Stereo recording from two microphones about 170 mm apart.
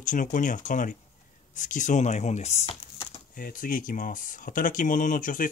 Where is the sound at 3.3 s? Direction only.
55° left (ahead or behind).